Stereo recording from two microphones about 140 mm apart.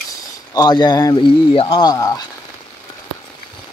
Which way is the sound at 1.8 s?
25° left (ahead or behind).